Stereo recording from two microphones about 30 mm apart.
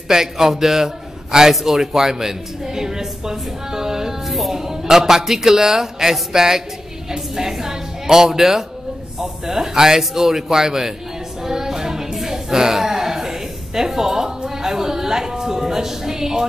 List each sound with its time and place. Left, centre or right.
0.1 s a man's voice: centre
4.3 s speech: centre
4.6 s a woman's voice: centre
11.4 s a sound: centre
12.2 s music: centre
12.7 s a sound: centre